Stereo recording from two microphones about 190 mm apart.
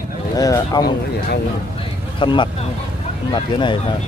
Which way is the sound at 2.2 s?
25° left (ahead or behind).